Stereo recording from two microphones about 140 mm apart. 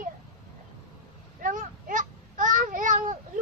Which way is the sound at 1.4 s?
70° right (ahead or behind).